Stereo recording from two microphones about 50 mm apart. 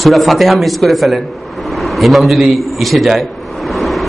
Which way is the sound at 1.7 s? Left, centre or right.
Centre.